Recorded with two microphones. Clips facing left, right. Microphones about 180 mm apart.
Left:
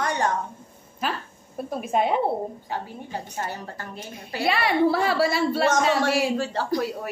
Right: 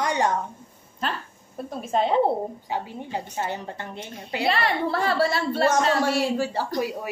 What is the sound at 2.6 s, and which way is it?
A woman's voice, 15° right (ahead or behind).